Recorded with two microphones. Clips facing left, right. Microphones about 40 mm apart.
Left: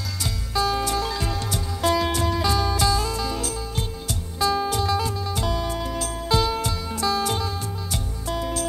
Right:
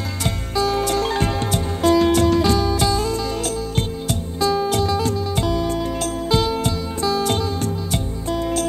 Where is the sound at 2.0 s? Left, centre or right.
Right.